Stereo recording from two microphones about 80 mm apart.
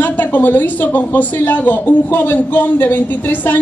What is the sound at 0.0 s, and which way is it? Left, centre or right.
A man's voice, left.